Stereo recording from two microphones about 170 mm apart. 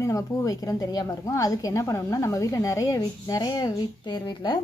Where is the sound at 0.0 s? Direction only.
20° left (ahead or behind).